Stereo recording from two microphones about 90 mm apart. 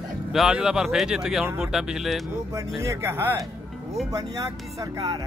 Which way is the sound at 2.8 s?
30° right (ahead or behind).